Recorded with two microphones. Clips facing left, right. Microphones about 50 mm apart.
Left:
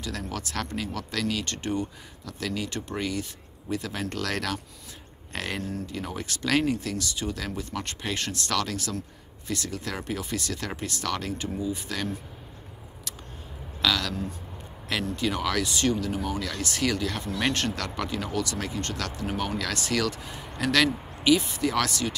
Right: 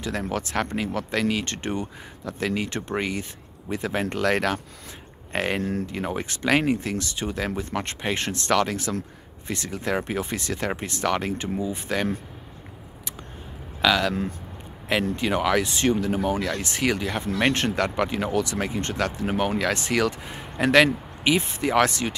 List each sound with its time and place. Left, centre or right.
0.0 s speech: right
5.6 s speech: right
13.7 s speech: right